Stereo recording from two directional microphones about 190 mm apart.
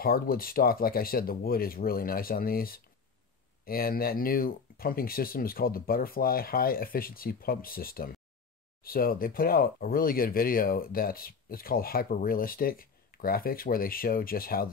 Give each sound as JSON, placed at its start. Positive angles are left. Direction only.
{"t": 0.0, "sound": "speech", "side_deg": 50}